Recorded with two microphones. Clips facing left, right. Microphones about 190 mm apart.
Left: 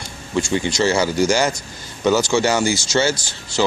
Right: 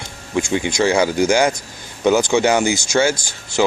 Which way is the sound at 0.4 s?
15° right (ahead or behind).